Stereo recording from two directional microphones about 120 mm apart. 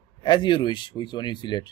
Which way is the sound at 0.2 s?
40° left (ahead or behind).